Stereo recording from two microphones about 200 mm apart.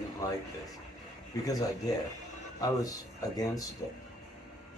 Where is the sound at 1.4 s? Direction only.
20° left (ahead or behind).